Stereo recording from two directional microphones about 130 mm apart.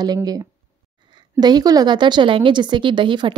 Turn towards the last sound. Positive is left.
turn(degrees=-40)  # may be behind; listen again after turning